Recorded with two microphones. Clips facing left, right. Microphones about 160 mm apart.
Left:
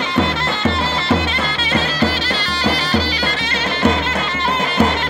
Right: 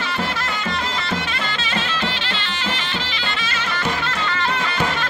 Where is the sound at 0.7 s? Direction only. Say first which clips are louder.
Left 10 dB; 30° left (ahead or behind).